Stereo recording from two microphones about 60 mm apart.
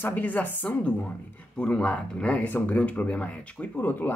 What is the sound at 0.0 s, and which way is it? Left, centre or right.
Speech, left.